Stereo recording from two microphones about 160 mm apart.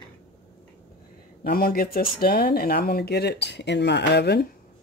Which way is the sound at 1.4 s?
65° left (ahead or behind).